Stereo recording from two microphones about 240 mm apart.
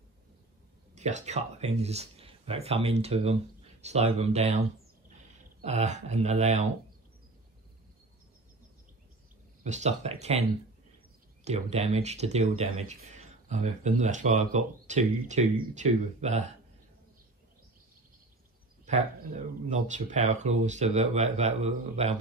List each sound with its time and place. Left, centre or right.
0.9 s speech: right
9.6 s speech: right
11.4 s speech: right
18.9 s speech: right